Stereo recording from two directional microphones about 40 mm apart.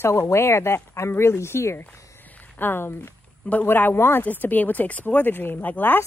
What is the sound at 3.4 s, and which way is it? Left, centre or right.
Speech, left.